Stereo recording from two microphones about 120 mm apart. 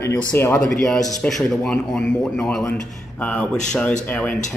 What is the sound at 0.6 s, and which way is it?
Speech, 5° left (ahead or behind).